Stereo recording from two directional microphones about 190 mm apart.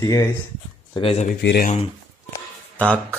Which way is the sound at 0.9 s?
30° left (ahead or behind).